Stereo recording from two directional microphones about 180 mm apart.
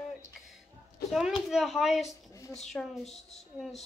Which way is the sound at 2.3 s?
20° left (ahead or behind).